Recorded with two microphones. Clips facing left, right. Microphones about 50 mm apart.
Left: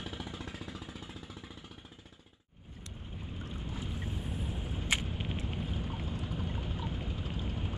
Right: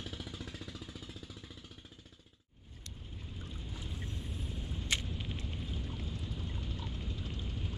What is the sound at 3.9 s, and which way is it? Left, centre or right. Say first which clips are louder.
Boat: left 4 dB; left.